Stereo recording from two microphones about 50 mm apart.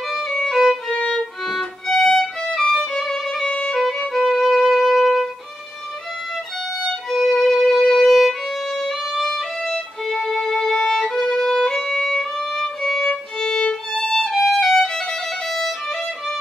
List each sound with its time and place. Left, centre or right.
0.1 s violin: centre
3.4 s music: centre
4.1 s music: centre
6.8 s violin: centre